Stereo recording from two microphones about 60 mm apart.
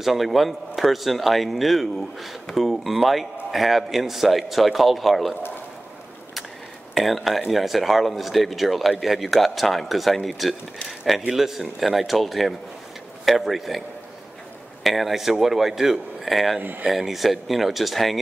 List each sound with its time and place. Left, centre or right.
0.0 s speech: centre
6.9 s speech: centre
16.5 s speech: right
16.8 s speech: centre